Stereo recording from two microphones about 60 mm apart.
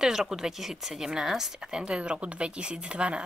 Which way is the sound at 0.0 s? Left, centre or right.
Centre.